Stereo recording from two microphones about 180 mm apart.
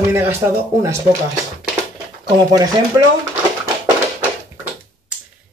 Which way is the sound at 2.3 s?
20° right (ahead or behind).